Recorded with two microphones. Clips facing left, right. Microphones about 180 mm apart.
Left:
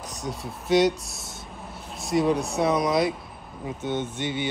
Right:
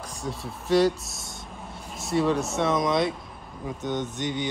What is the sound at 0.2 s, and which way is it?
Speech, 30° right (ahead or behind).